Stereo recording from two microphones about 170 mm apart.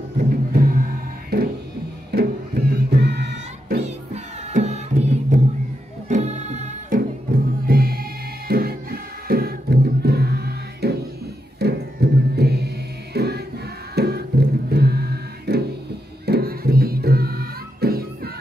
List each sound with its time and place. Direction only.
0.3 s music: 55° right (ahead or behind)
1.3 s music: 70° right (ahead or behind)
3.8 s music: 40° right (ahead or behind)
7.6 s music: 60° right (ahead or behind)
14.7 s choir: 70° right (ahead or behind)
16.3 s music: 65° right (ahead or behind)